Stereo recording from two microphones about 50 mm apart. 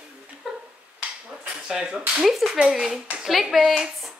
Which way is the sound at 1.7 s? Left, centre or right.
Centre.